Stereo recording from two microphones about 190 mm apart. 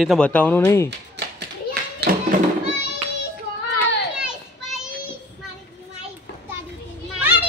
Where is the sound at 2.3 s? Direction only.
45° right (ahead or behind).